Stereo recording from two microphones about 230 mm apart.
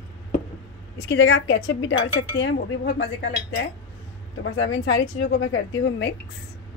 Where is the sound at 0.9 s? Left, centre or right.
Left.